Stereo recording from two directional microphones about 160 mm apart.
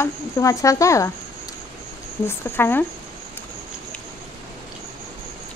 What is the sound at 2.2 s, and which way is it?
Speech, 15° left (ahead or behind).